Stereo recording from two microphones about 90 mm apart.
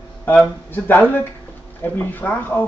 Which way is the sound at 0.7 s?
20° left (ahead or behind).